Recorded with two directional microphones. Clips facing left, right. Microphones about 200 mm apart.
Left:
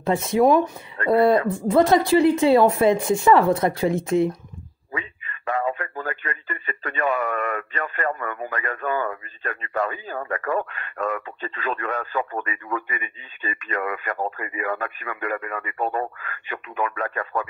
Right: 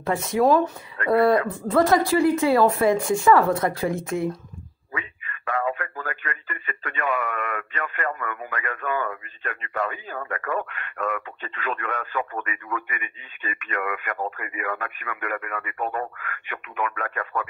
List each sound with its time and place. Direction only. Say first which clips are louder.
0.0 s a woman's voice: left 2 dB; 25° left (ahead or behind)